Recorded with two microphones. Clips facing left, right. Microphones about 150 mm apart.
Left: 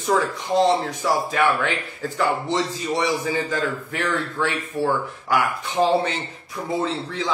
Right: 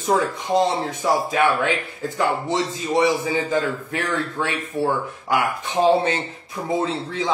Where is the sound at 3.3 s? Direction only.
20° right (ahead or behind).